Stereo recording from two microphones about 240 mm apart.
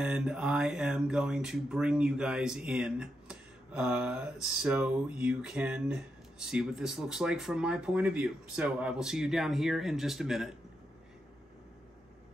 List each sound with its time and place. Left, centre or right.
0.0 s speech: centre